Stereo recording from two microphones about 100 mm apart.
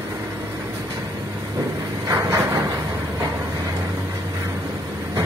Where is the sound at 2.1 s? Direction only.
25° right (ahead or behind).